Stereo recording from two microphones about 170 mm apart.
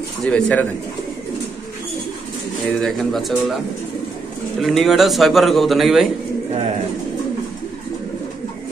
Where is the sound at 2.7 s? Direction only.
Centre (ahead or behind).